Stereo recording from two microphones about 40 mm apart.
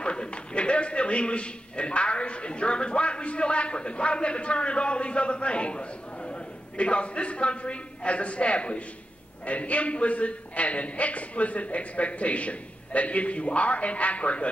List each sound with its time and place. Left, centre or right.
0.0 s a man's voice: left